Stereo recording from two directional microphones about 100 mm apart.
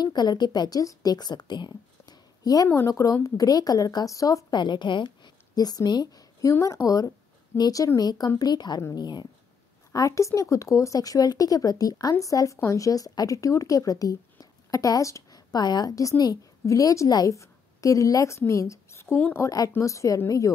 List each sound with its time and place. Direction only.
0.0 s a woman's voice: 45° left (ahead or behind)
9.9 s a woman's voice: 30° left (ahead or behind)
18.5 s a sound: 30° left (ahead or behind)
19.3 s speech: 35° left (ahead or behind)